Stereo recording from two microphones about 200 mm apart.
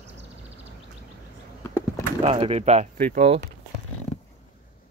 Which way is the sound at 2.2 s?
30° right (ahead or behind).